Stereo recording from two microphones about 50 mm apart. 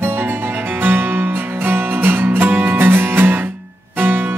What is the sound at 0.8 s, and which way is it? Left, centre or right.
Music, right.